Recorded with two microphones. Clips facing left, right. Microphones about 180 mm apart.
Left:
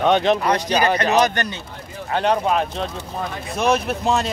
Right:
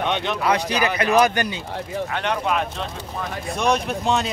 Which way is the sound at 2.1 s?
35° left (ahead or behind).